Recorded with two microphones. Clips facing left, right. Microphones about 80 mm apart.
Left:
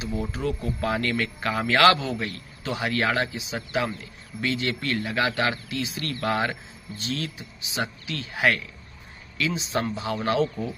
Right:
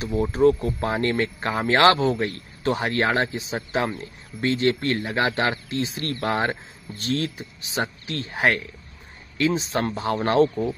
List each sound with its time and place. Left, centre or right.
0.0 s speech: right
7.0 s speech: right